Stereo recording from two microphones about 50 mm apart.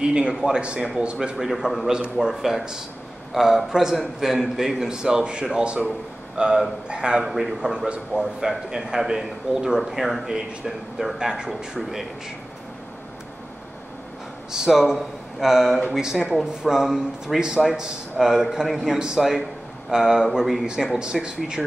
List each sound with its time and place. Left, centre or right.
0.0 s speech: centre
1.3 s a man's voice: centre
7.2 s a man's voice: centre
14.5 s a man's voice: centre